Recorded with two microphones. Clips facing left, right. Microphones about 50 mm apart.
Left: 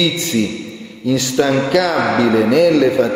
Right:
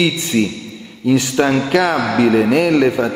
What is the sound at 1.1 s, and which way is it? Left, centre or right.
Speech, right.